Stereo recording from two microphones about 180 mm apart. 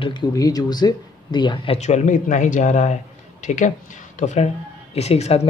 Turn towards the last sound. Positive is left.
turn(degrees=35)  # may be behind; listen again after turning